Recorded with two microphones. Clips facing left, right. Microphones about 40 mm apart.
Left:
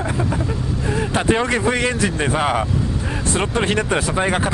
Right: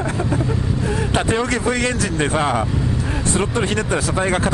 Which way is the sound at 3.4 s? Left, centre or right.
Left.